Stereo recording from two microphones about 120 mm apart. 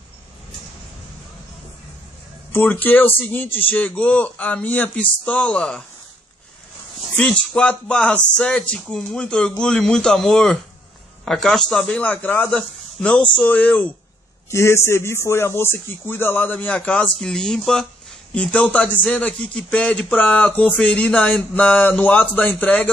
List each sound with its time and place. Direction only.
2.5 s speech: 15° left (ahead or behind)
7.2 s a man's voice: 10° left (ahead or behind)